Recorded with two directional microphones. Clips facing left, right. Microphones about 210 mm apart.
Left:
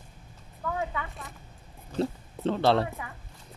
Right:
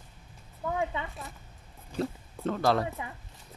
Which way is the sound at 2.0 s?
30° left (ahead or behind).